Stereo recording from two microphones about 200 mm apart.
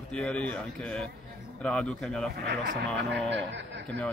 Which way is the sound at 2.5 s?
60° right (ahead or behind).